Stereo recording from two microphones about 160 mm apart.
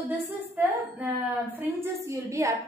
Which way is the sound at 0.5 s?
10° right (ahead or behind).